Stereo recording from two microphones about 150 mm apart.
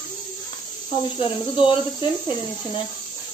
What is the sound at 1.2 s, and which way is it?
Speech, 35° left (ahead or behind).